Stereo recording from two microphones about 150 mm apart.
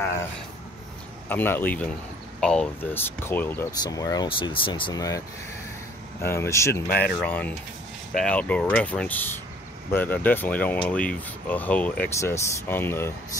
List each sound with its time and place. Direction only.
1.3 s speech: 15° left (ahead or behind)
3.8 s speech: 25° left (ahead or behind)
4.9 s speech: 20° left (ahead or behind)
6.2 s speech: 15° left (ahead or behind)